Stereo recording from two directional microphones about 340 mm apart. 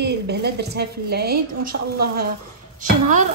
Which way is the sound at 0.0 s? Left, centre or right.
Right.